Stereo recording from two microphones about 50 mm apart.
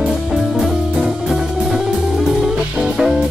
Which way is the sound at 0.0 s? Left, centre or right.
Centre.